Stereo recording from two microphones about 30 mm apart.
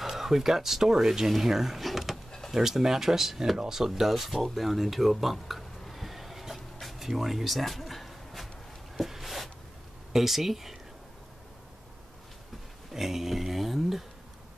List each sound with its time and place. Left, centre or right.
0.1 s speech: centre
1.9 s drawer open or close: centre
2.5 s speech: centre
3.9 s speech: centre
7.0 s a sound: centre
10.1 s speech: centre
12.9 s a sound: centre